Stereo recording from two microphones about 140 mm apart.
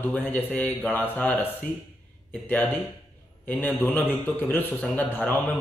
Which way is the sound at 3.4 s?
10° left (ahead or behind).